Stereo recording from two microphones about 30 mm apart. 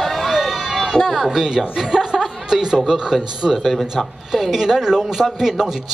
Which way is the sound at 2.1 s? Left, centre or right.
Centre.